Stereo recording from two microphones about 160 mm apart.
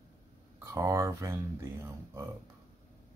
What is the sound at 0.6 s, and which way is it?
Speech, 20° right (ahead or behind).